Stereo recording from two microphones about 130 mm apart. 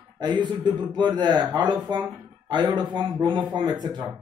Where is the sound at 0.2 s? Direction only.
35° right (ahead or behind).